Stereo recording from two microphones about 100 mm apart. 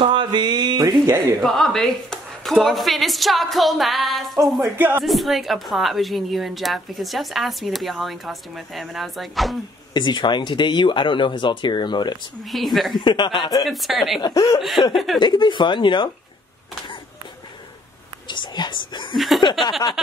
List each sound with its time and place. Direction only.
0.0 s a sound: 55° right (ahead or behind); by 1.2 s 35° right (ahead or behind)
1.4 s speech: 5° left (ahead or behind)
4.7 s speech: 20° right (ahead or behind)
5.0 s speech: centre (ahead or behind)
9.9 s speech: 50° left (ahead or behind)
12.4 s speech: centre (ahead or behind)
12.9 s speech: 50° left (ahead or behind)
13.7 s speech: centre (ahead or behind)
14.2 s speech: 40° left (ahead or behind)
14.6 s speech: centre (ahead or behind)
15.1 s speech: 50° left (ahead or behind)
18.2 s speech: 50° left (ahead or behind)
19.1 s speech: centre (ahead or behind)